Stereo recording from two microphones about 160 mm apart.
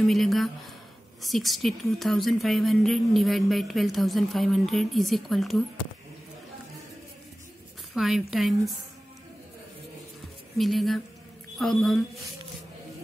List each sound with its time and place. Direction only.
0.0 s a woman's voice: centre (ahead or behind)
7.9 s a woman's voice: centre (ahead or behind)
10.6 s a woman's voice: centre (ahead or behind)